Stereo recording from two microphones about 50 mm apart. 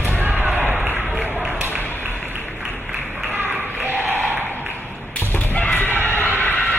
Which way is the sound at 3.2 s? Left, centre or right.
Right.